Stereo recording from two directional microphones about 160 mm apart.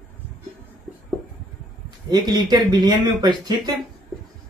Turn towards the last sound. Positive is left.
turn(degrees=-25)  # may be behind; listen again after turning